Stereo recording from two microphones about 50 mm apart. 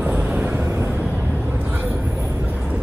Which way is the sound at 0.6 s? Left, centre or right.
Right.